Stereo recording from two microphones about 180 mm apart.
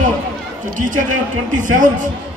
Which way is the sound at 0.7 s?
45° right (ahead or behind).